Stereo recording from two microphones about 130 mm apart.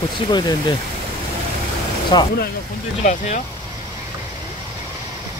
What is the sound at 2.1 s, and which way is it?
Speech, 35° left (ahead or behind).